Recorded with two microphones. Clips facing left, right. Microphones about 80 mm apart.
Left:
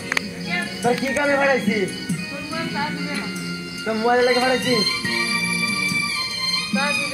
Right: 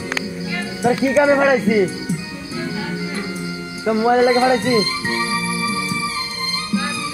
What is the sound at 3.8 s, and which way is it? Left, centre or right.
Speech, right.